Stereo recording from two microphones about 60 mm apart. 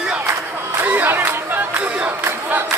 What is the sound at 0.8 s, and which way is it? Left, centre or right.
Crowd, right.